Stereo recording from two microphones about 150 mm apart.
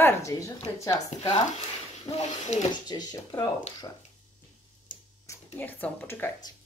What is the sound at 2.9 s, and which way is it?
Speech, 25° left (ahead or behind).